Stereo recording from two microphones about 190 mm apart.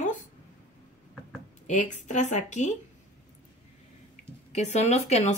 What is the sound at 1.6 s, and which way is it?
A woman's voice, 40° left (ahead or behind).